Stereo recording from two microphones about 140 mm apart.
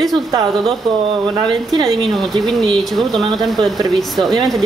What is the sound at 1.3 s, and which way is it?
Speech, 35° right (ahead or behind).